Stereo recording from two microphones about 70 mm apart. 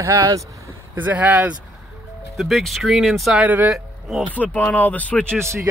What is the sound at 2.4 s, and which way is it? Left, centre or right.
Speech, centre.